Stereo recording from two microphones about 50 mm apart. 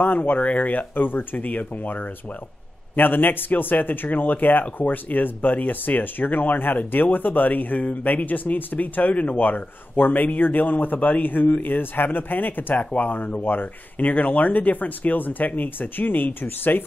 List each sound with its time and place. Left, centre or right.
0.0 s speech: left